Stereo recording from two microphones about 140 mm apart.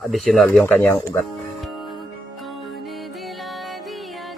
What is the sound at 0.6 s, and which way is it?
Speech, 15° left (ahead or behind).